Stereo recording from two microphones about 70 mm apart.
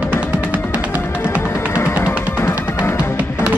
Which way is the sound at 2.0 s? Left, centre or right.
Left.